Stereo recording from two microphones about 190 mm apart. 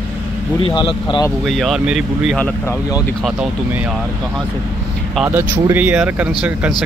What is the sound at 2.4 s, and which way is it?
Speech, 15° left (ahead or behind).